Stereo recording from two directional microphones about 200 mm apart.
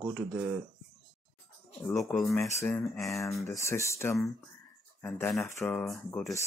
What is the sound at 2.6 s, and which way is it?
Speech, 10° left (ahead or behind).